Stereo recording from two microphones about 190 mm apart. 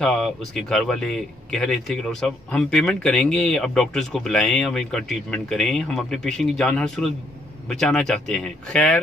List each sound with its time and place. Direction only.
0.0 s speech: centre (ahead or behind)